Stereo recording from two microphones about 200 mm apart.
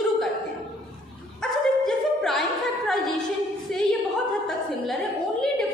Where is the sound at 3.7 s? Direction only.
Centre (ahead or behind).